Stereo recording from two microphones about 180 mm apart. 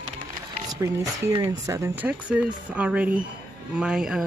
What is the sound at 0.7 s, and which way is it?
Speech, 20° right (ahead or behind).